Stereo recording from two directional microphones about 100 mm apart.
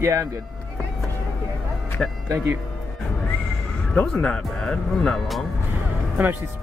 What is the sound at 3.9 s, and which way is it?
Speech, 10° left (ahead or behind).